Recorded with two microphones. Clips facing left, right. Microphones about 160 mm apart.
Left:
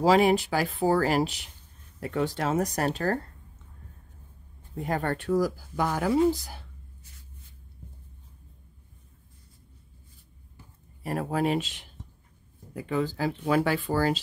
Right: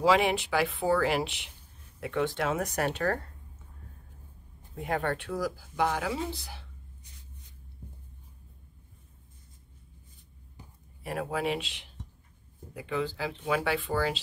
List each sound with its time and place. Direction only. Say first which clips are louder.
0.0 s speech: left 4 dB; 40° left (ahead or behind)
4.7 s speech: left 2 dB; 40° left (ahead or behind)
11.0 s speech: left 4 dB; 40° left (ahead or behind)